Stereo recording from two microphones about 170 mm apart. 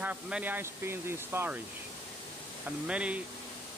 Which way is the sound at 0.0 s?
10° right (ahead or behind).